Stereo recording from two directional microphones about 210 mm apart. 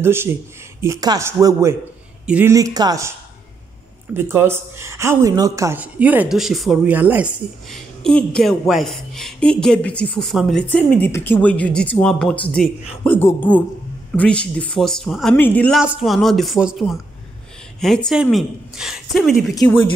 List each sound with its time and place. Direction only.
0.0 s a man's voice: 10° right (ahead or behind)
4.1 s a woman's voice: 10° right (ahead or behind)